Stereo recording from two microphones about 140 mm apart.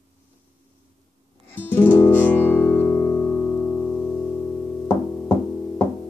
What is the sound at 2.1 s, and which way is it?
Music, 15° left (ahead or behind).